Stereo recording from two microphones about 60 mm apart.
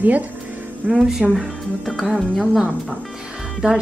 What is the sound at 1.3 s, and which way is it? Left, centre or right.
Speech, centre.